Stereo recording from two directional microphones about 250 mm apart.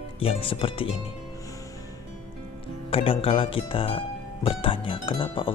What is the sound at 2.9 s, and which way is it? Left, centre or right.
Speech, left.